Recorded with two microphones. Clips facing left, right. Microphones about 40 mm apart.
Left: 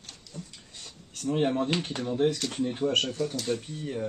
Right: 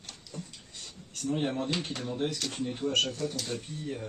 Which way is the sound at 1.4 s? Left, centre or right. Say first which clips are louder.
Left 4 dB; left.